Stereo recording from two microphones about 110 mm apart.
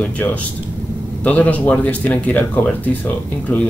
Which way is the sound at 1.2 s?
15° left (ahead or behind).